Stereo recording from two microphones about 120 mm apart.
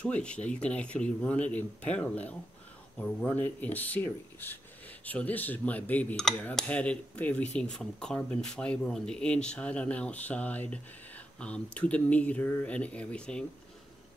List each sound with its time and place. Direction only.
0.0 s speech: 10° left (ahead or behind)